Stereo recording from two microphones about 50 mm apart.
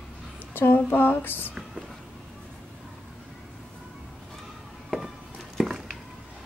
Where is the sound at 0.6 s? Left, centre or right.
Left.